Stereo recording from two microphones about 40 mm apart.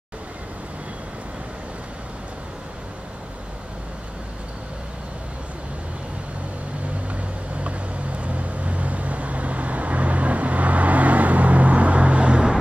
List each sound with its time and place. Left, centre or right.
8.2 s vehicle: right